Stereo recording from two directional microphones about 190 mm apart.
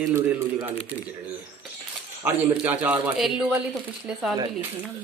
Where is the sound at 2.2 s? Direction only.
15° right (ahead or behind).